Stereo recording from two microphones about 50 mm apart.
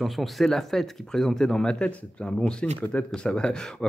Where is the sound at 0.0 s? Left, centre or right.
Centre.